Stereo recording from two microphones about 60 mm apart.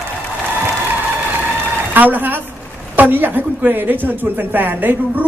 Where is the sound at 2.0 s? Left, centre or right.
Right.